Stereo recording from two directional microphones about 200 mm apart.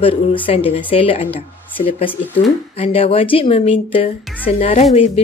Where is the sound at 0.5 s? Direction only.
30° left (ahead or behind).